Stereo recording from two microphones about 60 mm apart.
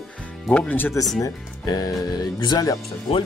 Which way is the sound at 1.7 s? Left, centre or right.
Left.